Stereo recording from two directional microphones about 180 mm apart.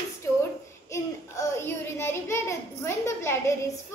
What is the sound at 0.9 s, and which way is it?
Child singing, 15° left (ahead or behind).